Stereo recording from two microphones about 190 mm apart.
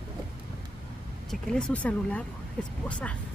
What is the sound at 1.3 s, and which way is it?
Speech, 5° left (ahead or behind).